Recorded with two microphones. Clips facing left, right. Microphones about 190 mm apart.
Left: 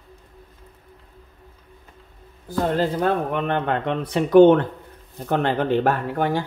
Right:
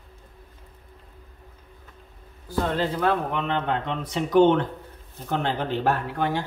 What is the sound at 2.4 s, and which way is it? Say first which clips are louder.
A man's voice: left 4 dB; 45° left (ahead or behind).